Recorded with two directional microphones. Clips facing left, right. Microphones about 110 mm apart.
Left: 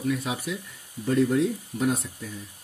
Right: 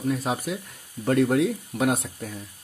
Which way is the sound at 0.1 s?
40° right (ahead or behind).